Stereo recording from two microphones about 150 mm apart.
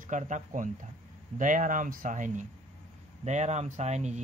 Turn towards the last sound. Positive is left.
turn(degrees=-50)  # may be behind; listen again after turning